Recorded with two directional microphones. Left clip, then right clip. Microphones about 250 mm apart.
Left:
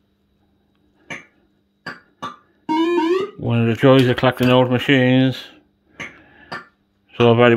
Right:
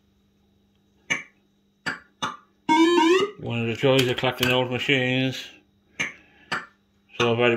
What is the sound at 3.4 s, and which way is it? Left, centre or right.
Speech, left.